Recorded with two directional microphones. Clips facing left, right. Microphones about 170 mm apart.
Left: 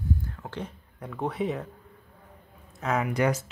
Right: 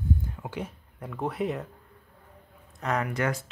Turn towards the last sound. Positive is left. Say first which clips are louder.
# left 3 dB
turn(degrees=15)  # may be behind; listen again after turning